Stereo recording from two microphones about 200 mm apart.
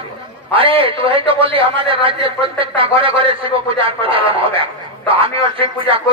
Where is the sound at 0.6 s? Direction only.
25° right (ahead or behind).